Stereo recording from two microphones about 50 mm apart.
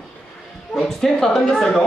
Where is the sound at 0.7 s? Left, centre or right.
Centre.